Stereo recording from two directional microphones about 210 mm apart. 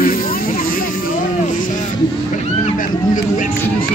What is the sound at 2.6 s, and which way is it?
Speech, 35° left (ahead or behind).